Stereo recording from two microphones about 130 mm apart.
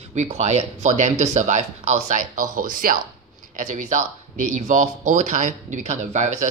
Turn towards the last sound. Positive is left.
turn(degrees=-65)  # may be behind; listen again after turning